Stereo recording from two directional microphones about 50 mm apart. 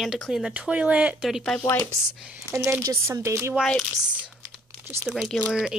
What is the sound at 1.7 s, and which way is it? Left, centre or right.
Speech, left.